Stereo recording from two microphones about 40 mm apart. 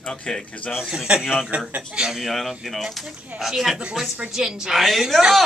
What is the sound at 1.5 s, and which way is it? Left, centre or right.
Speech, right.